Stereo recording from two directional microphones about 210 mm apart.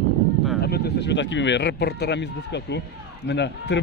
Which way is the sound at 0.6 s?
50° left (ahead or behind).